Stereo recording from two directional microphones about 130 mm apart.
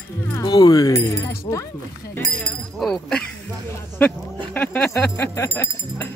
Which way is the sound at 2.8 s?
5° left (ahead or behind).